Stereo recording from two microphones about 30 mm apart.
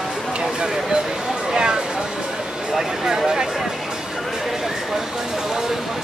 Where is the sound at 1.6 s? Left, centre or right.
Right.